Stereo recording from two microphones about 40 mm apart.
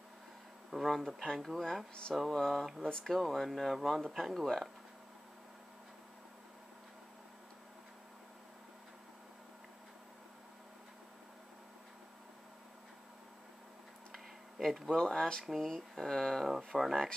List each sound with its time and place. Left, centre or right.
0.7 s speech: centre
14.1 s a sound: centre
15.0 s speech: centre